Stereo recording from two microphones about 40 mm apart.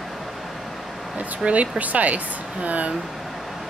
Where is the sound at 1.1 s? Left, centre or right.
Right.